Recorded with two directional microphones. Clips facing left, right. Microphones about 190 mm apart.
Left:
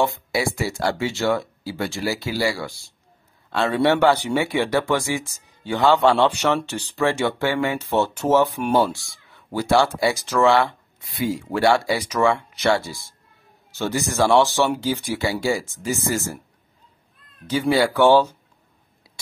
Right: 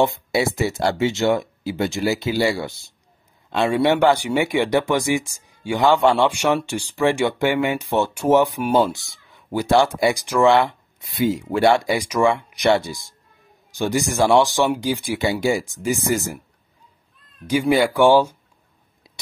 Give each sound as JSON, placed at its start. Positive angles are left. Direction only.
{"t": 0.0, "sound": "speech", "side_deg": -20}
{"t": 17.5, "sound": "speech", "side_deg": -15}